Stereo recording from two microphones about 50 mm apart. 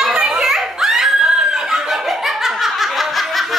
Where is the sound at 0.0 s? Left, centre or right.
Centre.